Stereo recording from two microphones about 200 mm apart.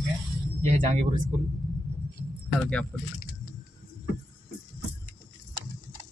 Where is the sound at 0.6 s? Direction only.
35° right (ahead or behind).